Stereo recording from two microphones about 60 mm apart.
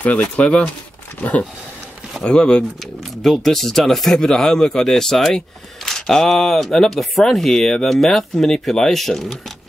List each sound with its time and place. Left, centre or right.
0.0 s speech: left
2.2 s speech: centre